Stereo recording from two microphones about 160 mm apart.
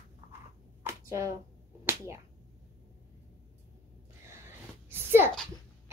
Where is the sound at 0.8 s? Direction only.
20° right (ahead or behind).